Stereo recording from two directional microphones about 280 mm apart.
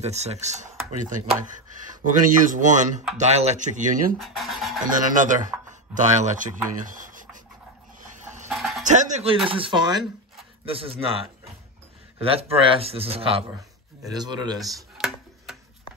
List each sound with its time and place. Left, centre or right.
0.0 s speech: right
4.2 s scratch: centre
4.8 s speech: right
8.5 s music: centre
8.8 s music: right
9.5 s speech: centre
15.0 s tick-tock: centre